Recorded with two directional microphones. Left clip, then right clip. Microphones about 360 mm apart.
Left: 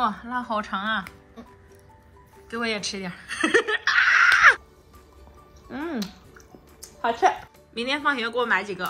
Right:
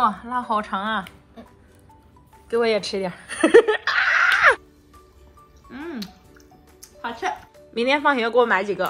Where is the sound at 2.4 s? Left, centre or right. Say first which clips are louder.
Right 7 dB; centre.